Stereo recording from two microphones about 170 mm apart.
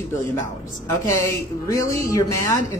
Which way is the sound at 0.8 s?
20° left (ahead or behind).